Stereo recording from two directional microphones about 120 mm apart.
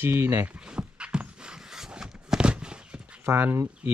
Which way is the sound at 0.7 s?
10° right (ahead or behind).